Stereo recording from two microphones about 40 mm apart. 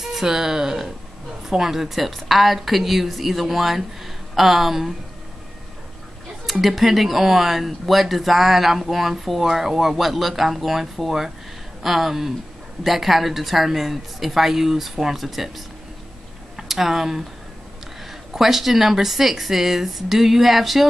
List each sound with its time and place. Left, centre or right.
0.0 s speech: centre
6.6 s speech: centre
16.5 s speech: centre
18.3 s speech: centre